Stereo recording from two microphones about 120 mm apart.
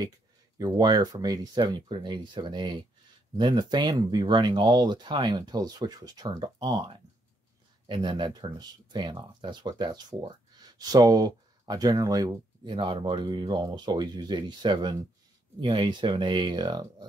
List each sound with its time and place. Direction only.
0.6 s speech: 35° right (ahead or behind)